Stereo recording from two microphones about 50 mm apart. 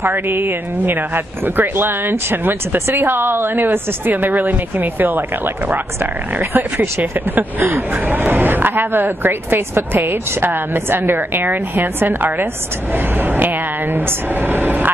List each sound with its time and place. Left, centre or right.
0.0 s speech: right